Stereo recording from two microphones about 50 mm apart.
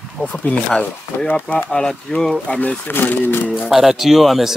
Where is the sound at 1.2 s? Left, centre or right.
Left.